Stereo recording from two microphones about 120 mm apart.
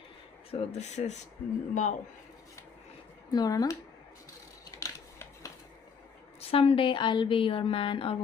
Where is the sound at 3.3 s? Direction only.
35° left (ahead or behind).